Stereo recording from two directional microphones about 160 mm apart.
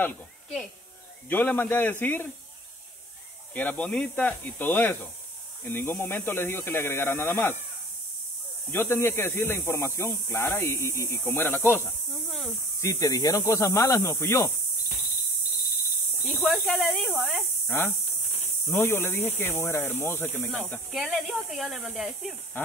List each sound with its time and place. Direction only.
0.0 s speech: 5° left (ahead or behind)
3.5 s speech: 10° left (ahead or behind)
8.7 s speech: 15° left (ahead or behind)
16.3 s speech: 5° right (ahead or behind)
17.3 s speech: 15° left (ahead or behind)
20.9 s speech: centre (ahead or behind)